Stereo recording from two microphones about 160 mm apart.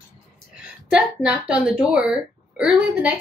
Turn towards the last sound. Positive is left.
turn(degrees=-5)  # may be behind; listen again after turning